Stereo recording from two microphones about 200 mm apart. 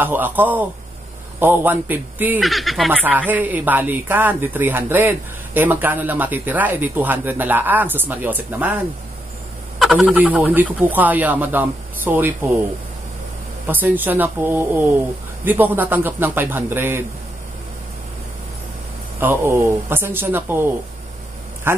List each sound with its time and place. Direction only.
0.0 s speech: 10° right (ahead or behind)
9.8 s speech: centre (ahead or behind)
13.7 s speech: 10° right (ahead or behind)
19.1 s speech: 10° right (ahead or behind)
21.7 s speech: 10° right (ahead or behind)